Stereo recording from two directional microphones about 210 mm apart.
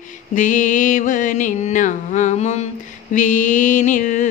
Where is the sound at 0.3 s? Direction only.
40° left (ahead or behind).